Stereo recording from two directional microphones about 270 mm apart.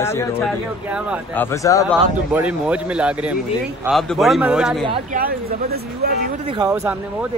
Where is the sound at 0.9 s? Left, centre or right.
Centre.